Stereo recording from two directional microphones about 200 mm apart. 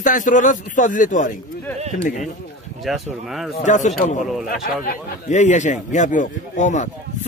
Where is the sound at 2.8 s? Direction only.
Centre (ahead or behind).